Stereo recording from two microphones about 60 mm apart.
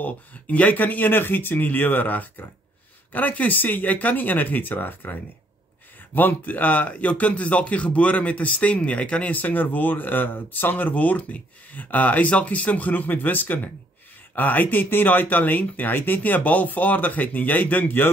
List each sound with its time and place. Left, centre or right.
0.0 s speech: left
6.1 s speech: left